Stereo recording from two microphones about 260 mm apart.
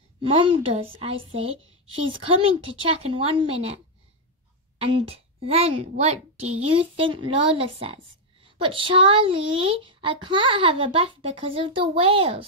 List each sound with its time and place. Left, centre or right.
0.2 s speech: right
4.9 s speech: right